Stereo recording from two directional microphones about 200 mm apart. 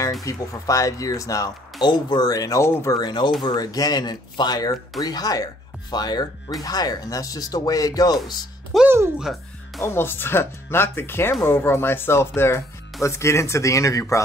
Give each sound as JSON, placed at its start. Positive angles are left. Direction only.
{"t": 0.2, "sound": "speech", "side_deg": 15}
{"t": 8.7, "sound": "speech", "side_deg": -10}
{"t": 9.8, "sound": "speech", "side_deg": 10}